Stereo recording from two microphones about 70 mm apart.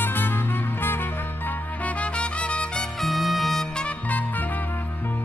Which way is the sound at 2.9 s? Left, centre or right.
Centre.